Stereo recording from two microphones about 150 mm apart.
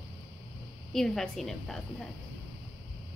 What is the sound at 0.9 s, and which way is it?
A woman's voice, centre (ahead or behind).